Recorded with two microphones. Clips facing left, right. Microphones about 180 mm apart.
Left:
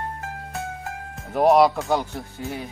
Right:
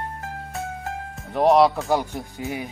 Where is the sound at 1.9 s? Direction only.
15° right (ahead or behind).